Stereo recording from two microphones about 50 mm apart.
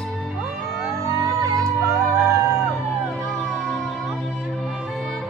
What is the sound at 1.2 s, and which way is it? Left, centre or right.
Music, right.